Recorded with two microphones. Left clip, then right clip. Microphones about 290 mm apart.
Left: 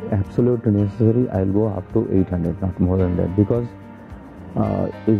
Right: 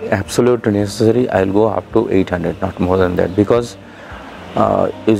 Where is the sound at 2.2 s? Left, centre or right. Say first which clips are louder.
Right 7 dB; centre.